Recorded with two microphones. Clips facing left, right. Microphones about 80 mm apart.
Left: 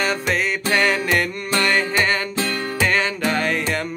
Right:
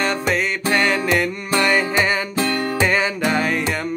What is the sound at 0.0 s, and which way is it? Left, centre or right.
Music, centre.